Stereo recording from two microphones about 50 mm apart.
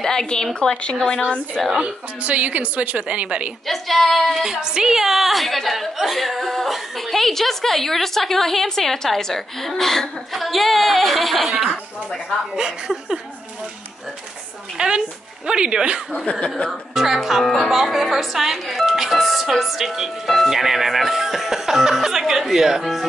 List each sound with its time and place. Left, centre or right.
0.0 s a woman's voice: centre
0.6 s speech: left
0.9 s a woman's voice: centre
1.7 s speech: centre
2.2 s a woman's voice: right
3.6 s a woman's voice: centre
4.3 s a woman's voice: centre
12.5 s speech: centre
14.8 s a woman's voice: centre
16.3 s speech: left
16.9 s a woman's voice: centre